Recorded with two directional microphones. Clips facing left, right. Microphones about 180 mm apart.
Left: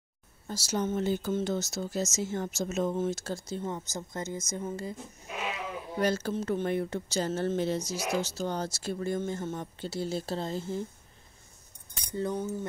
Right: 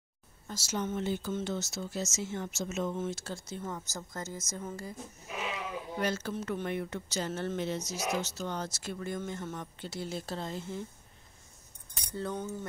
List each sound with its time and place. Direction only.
0.5 s speech: 35° left (ahead or behind)
3.6 s speech: 20° left (ahead or behind)
5.9 s speech: 35° left (ahead or behind)
12.1 s speech: 15° left (ahead or behind)